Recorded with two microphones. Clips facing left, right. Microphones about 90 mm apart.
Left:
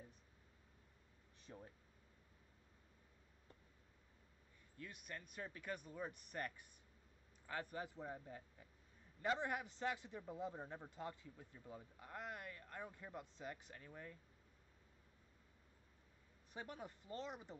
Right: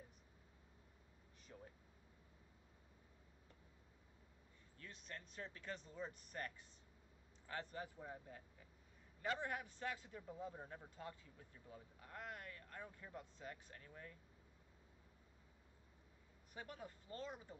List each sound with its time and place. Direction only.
1.5 s speech: 15° left (ahead or behind)
4.8 s speech: 15° left (ahead or behind)
7.7 s a man's voice: 20° left (ahead or behind)
16.5 s a man's voice: 25° left (ahead or behind)